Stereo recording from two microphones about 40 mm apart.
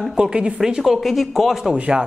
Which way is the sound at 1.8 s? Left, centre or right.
Right.